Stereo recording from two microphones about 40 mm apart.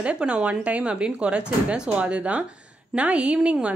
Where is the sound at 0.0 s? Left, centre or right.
Right.